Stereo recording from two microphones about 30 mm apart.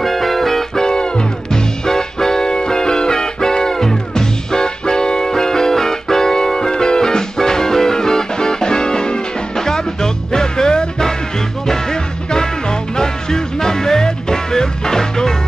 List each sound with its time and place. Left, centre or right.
0.0 s music: centre
0.7 s music: left
1.9 s music: centre
9.6 s music: centre
11.6 s music: centre